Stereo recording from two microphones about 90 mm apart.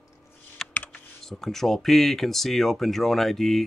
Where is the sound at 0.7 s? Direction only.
15° left (ahead or behind).